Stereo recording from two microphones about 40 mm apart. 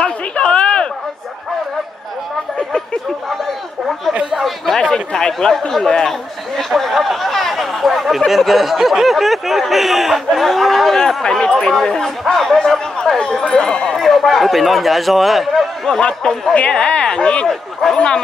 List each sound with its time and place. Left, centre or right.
0.0 s a sound: left
4.4 s a sound: centre
4.9 s speech: centre
6.5 s a sound: centre
8.3 s snicker: centre
11.2 s speech: centre
13.0 s speech: left
13.9 s a man's voice: centre
16.7 s speech: left